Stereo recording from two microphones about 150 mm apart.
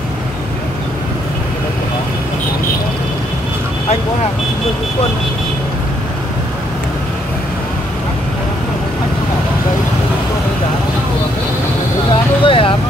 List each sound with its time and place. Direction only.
12.1 s vehicle: 35° left (ahead or behind)